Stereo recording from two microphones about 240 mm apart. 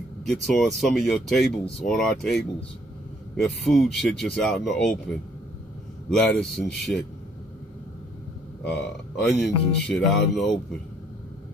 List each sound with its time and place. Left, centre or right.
0.2 s speech: centre
6.0 s speech: centre
8.6 s speech: centre